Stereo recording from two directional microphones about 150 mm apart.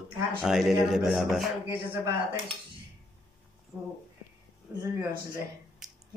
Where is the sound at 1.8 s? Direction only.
30° right (ahead or behind).